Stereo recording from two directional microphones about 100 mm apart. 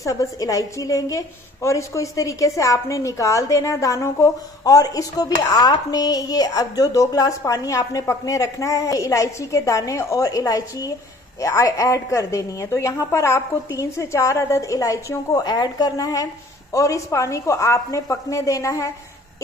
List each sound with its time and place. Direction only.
0.0 s a woman's voice: 35° left (ahead or behind)